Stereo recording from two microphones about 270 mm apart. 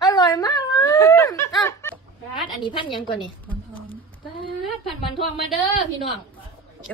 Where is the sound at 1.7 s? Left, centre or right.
Centre.